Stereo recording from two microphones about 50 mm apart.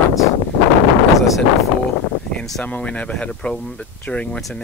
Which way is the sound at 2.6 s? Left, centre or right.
Left.